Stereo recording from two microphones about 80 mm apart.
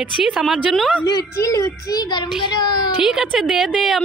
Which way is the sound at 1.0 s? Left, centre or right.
Left.